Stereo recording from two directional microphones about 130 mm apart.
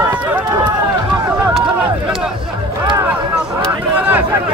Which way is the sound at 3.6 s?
15° right (ahead or behind).